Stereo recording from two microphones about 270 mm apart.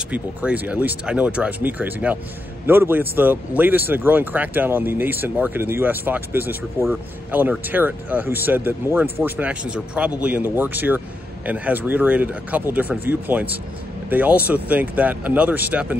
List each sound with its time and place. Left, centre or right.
0.1 s speech: centre